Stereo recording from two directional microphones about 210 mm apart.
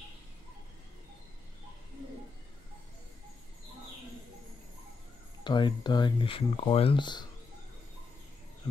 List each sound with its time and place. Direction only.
5.4 s speech: 20° left (ahead or behind)